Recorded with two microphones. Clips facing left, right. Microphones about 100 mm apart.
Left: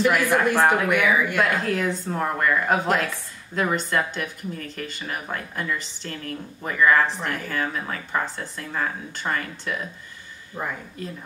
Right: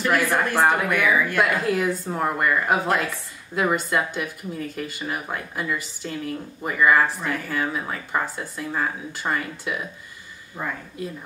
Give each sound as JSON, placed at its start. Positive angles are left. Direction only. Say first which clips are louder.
{"t": 0.6, "sound": "a woman's voice", "louder": "right 2 dB", "side_deg": -10}
{"t": 0.8, "sound": "speech", "louder": "even", "side_deg": 15}
{"t": 1.4, "sound": "a woman's voice", "louder": "right 1 dB", "side_deg": -5}
{"t": 11.0, "sound": "a woman's voice", "louder": "right 4 dB", "side_deg": -5}